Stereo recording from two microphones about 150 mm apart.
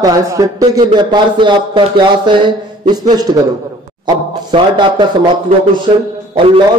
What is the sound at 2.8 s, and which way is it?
A man's voice, 25° right (ahead or behind).